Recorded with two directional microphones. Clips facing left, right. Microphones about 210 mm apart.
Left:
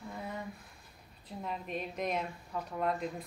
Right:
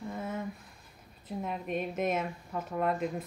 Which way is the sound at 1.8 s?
5° right (ahead or behind).